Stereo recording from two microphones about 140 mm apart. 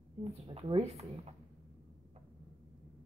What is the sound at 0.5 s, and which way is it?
Speech, 45° right (ahead or behind).